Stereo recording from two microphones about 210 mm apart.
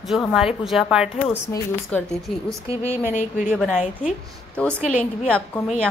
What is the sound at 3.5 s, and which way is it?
Speech, 5° right (ahead or behind).